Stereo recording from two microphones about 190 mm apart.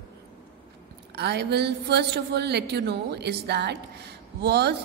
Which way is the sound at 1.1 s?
60° right (ahead or behind).